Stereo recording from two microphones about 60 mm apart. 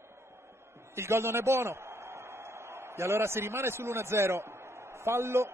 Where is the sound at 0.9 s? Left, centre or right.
Right.